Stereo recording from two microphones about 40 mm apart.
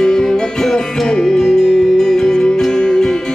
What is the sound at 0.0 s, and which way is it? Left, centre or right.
Music, centre.